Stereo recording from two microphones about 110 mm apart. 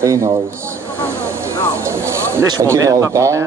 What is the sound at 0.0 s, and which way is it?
Speech, 25° right (ahead or behind).